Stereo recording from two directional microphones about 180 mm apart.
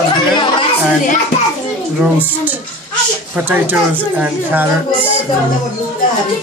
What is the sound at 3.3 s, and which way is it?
A woman's voice, 10° right (ahead or behind).